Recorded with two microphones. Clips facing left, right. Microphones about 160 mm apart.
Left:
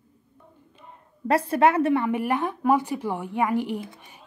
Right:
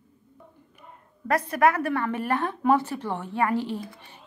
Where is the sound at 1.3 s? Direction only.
25° left (ahead or behind).